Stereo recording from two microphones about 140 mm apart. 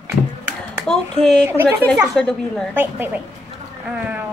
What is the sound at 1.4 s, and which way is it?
Speech, 20° right (ahead or behind).